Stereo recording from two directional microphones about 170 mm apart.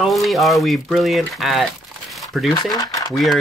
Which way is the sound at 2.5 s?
20° left (ahead or behind).